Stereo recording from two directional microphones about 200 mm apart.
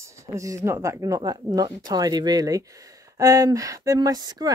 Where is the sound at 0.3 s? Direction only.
15° right (ahead or behind).